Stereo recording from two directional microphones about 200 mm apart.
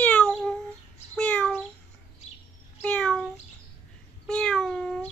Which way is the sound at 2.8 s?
5° left (ahead or behind).